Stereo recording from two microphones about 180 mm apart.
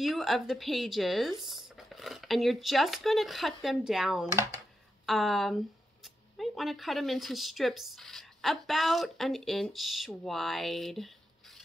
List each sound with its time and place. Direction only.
0.0 s speech: centre (ahead or behind)
4.3 s speech: 15° right (ahead or behind)
5.0 s speech: centre (ahead or behind)